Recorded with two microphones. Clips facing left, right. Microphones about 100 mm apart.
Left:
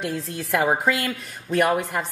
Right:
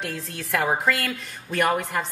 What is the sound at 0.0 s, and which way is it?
A woman's voice, centre (ahead or behind).